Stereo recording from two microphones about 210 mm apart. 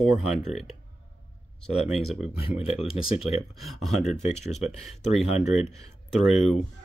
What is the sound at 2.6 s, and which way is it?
Speech, 5° right (ahead or behind).